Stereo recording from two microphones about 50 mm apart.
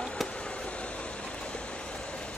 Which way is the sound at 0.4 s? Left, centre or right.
Left.